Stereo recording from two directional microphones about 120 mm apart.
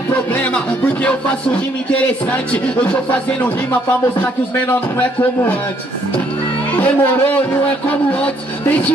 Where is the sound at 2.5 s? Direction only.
15° left (ahead or behind).